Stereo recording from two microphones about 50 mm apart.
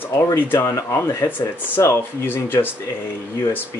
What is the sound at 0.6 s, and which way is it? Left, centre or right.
Speech, left.